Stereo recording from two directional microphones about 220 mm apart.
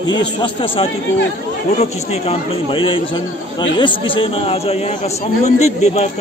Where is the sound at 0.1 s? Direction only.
20° left (ahead or behind).